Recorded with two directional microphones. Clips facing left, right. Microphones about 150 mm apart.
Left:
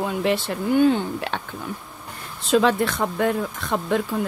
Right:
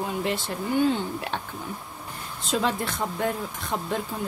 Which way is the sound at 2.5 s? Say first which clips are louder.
Left 8 dB; 75° left (ahead or behind).